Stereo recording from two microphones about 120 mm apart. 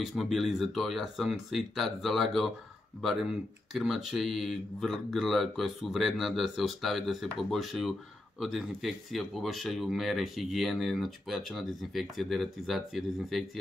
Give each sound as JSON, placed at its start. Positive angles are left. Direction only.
{"t": 0.0, "sound": "speech", "side_deg": 0}